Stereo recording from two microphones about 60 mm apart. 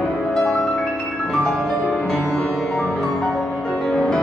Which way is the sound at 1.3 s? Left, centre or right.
Centre.